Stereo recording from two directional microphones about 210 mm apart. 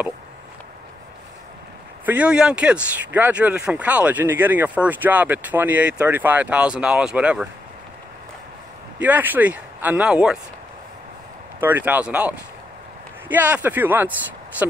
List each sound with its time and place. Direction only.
2.0 s speech: 5° right (ahead or behind)
9.0 s speech: 10° right (ahead or behind)
11.6 s speech: 10° right (ahead or behind)